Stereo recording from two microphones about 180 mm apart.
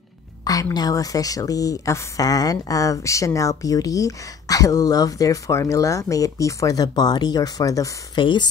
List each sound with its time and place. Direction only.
0.5 s a woman's voice: 20° left (ahead or behind)